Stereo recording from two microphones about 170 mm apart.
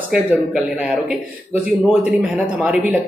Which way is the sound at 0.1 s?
5° right (ahead or behind).